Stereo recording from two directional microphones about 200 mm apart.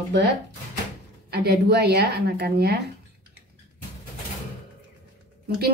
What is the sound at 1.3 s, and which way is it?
Speech, 55° right (ahead or behind).